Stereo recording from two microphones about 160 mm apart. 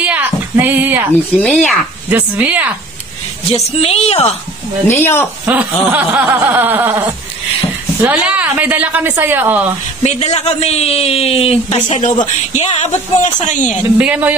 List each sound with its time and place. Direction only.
0.0 s a sound: 10° right (ahead or behind)
1.4 s speech: 5° left (ahead or behind)
2.0 s a woman's voice: 10° right (ahead or behind)
3.5 s a man's voice: 40° left (ahead or behind)
4.8 s speech: 15° left (ahead or behind)
5.4 s a woman's voice: 10° right (ahead or behind)
8.1 s a woman's voice: 10° right (ahead or behind)
10.0 s a man's voice: 40° left (ahead or behind)
12.0 s speech: 50° left (ahead or behind)
13.9 s a woman's voice: 10° right (ahead or behind)